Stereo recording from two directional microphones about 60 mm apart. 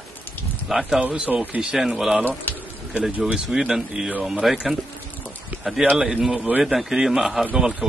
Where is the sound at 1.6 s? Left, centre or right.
Centre.